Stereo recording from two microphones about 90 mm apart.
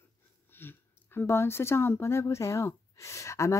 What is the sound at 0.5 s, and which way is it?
Speech, 25° left (ahead or behind).